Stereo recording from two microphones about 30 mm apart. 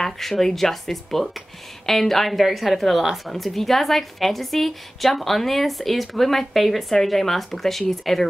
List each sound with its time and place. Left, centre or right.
0.0 s a woman's voice: centre
2.4 s a woman's voice: centre